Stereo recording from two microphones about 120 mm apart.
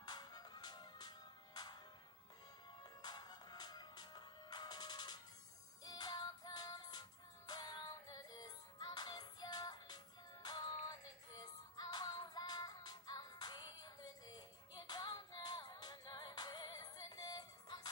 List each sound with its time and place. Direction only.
0.0 s music: 35° left (ahead or behind)
2.8 s music: 35° left (ahead or behind)